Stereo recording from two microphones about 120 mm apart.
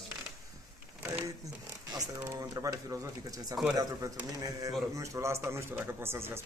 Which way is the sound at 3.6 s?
Centre (ahead or behind).